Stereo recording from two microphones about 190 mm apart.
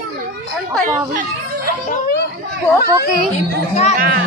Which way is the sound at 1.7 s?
50° left (ahead or behind).